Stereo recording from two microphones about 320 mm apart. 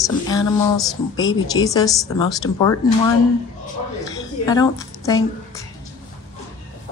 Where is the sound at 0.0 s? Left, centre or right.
Centre.